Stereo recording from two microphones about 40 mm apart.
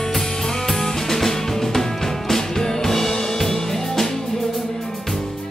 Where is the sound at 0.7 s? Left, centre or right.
Centre.